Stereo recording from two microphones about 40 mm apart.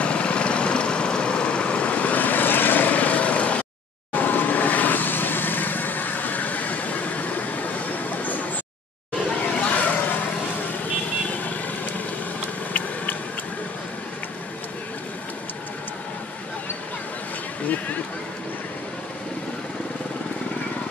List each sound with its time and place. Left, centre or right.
0.0 s vehicle: left
4.1 s vehicle: left
9.3 s hubbub: left
9.9 s vehicle: left
11.2 s vehicle: left
17.6 s a sound: left